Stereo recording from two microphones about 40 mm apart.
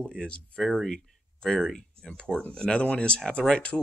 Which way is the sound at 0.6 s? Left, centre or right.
Centre.